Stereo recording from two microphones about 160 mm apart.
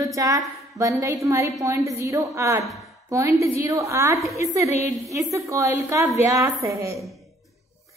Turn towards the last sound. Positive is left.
turn(degrees=-15)  # may be behind; listen again after turning